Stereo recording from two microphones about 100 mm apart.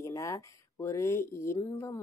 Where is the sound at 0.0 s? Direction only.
30° left (ahead or behind).